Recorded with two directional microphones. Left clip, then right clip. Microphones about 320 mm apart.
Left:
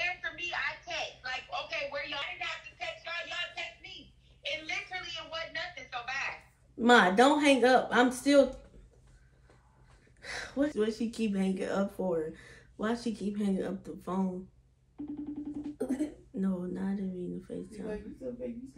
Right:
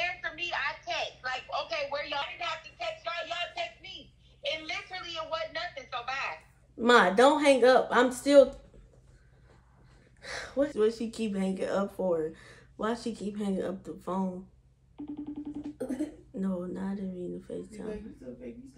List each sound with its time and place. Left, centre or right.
0.0 s a sound: centre
6.8 s a woman's voice: centre
10.2 s speech: centre
15.8 s throat clearing: centre